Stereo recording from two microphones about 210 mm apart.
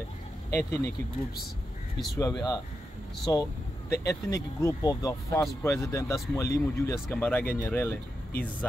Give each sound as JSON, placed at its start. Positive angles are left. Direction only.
{"t": 0.5, "sound": "speech", "side_deg": 10}
{"t": 2.1, "sound": "speech", "side_deg": 15}